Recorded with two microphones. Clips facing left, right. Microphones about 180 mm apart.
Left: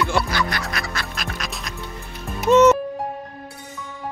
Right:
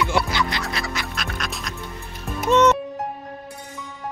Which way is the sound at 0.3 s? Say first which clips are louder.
Even; 20° right (ahead or behind).